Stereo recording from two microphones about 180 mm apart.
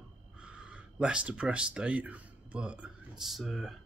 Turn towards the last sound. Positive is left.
turn(degrees=0)  # may be behind; listen again after turning